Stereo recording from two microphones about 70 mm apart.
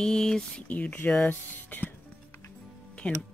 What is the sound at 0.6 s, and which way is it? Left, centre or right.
Speech, left.